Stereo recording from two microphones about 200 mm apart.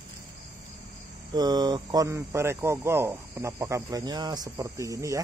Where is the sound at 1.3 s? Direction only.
20° right (ahead or behind).